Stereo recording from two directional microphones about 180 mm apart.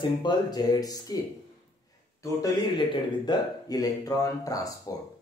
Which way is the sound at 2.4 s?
25° left (ahead or behind).